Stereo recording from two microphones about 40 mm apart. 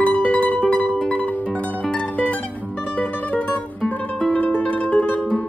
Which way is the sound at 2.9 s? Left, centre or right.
Left.